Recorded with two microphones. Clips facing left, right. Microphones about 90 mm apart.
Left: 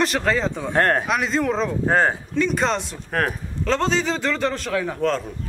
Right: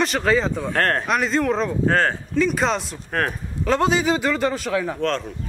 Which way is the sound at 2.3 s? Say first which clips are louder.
Right 1 dB; centre (ahead or behind).